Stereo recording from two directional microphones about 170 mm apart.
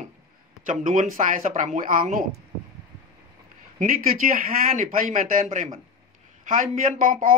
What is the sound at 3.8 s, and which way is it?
A man's voice, 55° right (ahead or behind).